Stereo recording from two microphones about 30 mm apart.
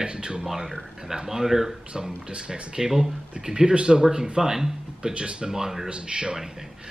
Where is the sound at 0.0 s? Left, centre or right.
Right.